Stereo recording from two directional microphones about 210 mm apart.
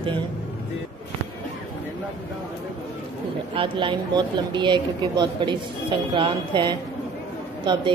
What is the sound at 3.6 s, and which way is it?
Speech, 25° right (ahead or behind).